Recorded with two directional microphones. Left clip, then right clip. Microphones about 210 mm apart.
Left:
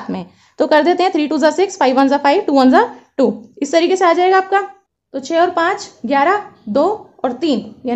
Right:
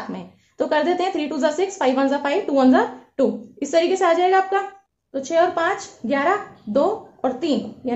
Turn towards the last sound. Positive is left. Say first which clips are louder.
# left 5 dB
turn(degrees=40)  # may be behind; listen again after turning